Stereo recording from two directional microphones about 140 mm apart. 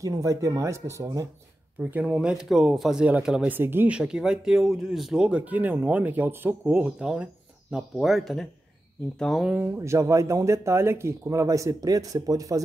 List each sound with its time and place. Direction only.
0.0 s speech: 25° right (ahead or behind)
1.8 s speech: 10° right (ahead or behind)
9.5 s speech: 15° right (ahead or behind)